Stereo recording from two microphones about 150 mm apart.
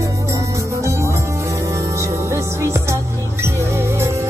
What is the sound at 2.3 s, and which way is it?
Music, 20° right (ahead or behind).